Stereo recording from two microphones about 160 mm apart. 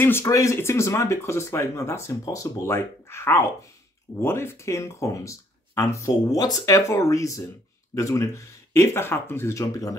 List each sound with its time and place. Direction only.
0.0 s speech: 15° left (ahead or behind)